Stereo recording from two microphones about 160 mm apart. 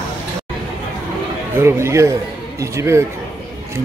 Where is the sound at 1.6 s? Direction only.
15° right (ahead or behind).